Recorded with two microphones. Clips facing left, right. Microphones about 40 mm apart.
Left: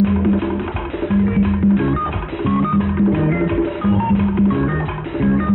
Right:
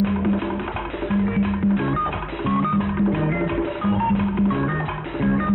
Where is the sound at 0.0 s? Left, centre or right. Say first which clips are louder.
Left 5 dB; centre.